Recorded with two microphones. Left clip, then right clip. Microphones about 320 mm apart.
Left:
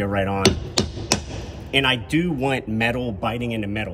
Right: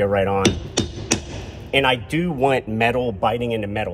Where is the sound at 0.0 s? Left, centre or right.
Centre.